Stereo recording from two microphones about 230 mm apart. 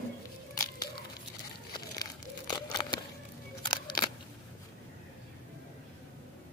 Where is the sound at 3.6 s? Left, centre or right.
Centre.